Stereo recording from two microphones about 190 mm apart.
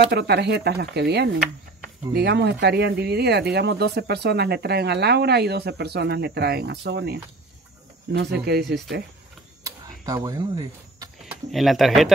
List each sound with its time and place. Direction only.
0.0 s speech: 60° right (ahead or behind)
9.6 s a sound: 15° right (ahead or behind)
11.2 s speech: centre (ahead or behind)